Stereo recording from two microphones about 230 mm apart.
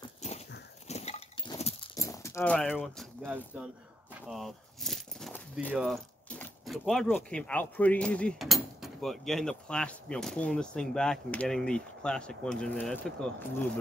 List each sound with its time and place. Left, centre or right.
0.2 s horse: left
0.8 s chink: left
1.5 s a sound: left
2.0 s speech: centre
4.3 s keys jangling: centre
5.8 s speech: centre